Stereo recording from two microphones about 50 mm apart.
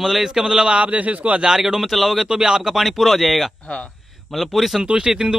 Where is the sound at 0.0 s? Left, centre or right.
Centre.